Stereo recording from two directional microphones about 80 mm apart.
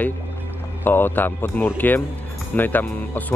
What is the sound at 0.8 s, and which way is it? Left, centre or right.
Speech, left.